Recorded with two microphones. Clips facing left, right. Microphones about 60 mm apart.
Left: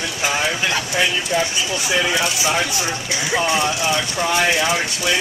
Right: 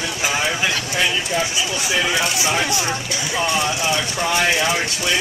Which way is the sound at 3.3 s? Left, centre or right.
Centre.